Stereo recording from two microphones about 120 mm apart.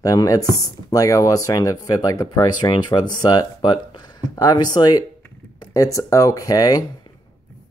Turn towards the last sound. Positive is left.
turn(degrees=30)  # may be behind; listen again after turning